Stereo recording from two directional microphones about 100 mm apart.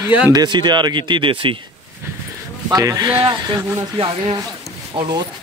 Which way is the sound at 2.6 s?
40° right (ahead or behind).